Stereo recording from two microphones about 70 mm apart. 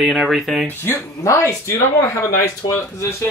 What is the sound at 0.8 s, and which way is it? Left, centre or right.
Speech, left.